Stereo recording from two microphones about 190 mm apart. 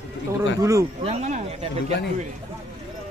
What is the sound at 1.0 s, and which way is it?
Speech, 35° right (ahead or behind).